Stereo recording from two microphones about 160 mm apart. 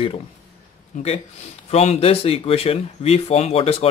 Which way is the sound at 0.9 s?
50° left (ahead or behind).